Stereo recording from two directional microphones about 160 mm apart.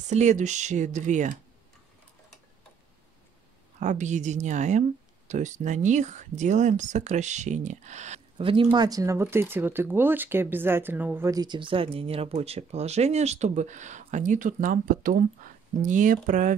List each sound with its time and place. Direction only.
0.1 s speech: 45° right (ahead or behind)
3.8 s speech: 50° right (ahead or behind)
8.4 s speech: 35° right (ahead or behind); by 16.5 s 55° right (ahead or behind)